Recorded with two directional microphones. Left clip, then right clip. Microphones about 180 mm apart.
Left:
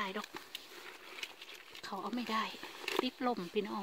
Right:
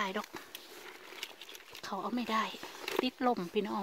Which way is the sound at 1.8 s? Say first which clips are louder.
Right 3 dB; 25° right (ahead or behind).